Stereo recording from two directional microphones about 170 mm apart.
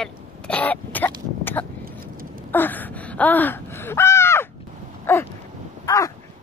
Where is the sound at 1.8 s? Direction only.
60° right (ahead or behind).